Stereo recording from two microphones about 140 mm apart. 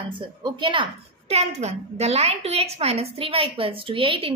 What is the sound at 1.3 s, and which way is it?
A woman's voice, 50° right (ahead or behind).